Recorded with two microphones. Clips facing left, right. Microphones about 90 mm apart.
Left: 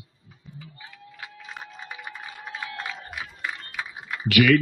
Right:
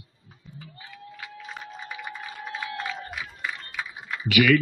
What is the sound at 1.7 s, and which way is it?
Music, centre (ahead or behind).